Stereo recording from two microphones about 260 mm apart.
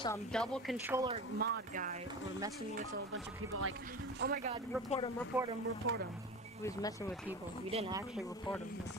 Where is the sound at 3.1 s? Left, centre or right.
Right.